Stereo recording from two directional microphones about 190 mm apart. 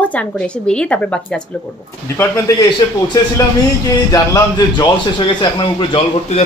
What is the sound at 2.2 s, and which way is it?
A man's voice, 20° left (ahead or behind).